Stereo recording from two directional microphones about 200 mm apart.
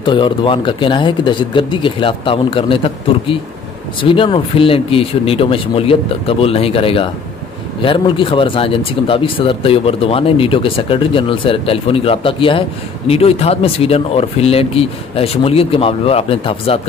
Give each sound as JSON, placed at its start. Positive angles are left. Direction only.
{"t": 0.0, "sound": "speech", "side_deg": 25}